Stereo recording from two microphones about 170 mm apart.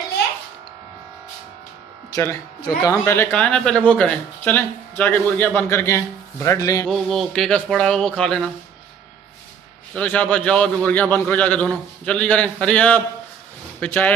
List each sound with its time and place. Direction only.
2.0 s speech: 20° left (ahead or behind)
6.9 s speech: centre (ahead or behind)
9.9 s speech: 10° left (ahead or behind)